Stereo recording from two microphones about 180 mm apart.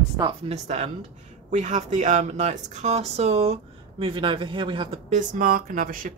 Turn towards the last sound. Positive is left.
turn(degrees=-50)  # may be behind; listen again after turning